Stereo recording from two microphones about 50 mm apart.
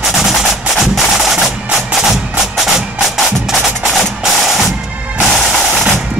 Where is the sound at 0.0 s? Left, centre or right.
Centre.